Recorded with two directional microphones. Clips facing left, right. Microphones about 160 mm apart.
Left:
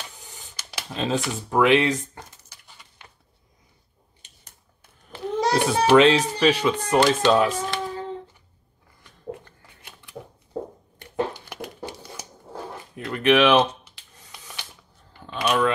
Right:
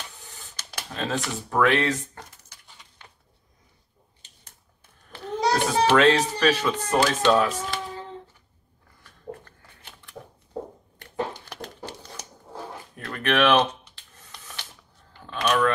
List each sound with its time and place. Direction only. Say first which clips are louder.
0.6 s camera: left 3 dB; 15° left (ahead or behind)
1.2 s speech: left 1 dB; 15° left (ahead or behind)
5.7 s speech: left 3 dB; 10° left (ahead or behind)
7.0 s speech: left 2 dB; centre (ahead or behind)
11.0 s a sound: left 3 dB; 10° left (ahead or behind)